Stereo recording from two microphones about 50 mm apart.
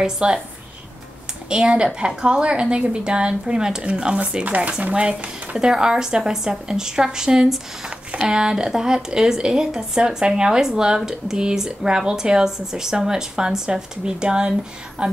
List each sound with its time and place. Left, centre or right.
0.0 s a woman's voice: centre
1.5 s a woman's voice: centre